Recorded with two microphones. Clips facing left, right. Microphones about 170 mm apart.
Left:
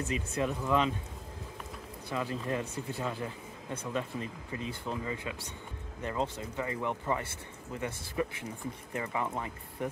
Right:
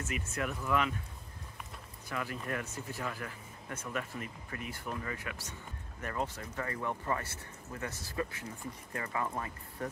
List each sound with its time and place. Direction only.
0.0 s speech: 30° left (ahead or behind)
2.0 s speech: 25° left (ahead or behind)